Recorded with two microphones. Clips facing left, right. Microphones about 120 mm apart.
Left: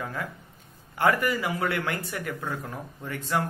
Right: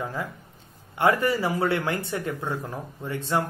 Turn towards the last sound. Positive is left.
turn(degrees=-25)  # may be behind; listen again after turning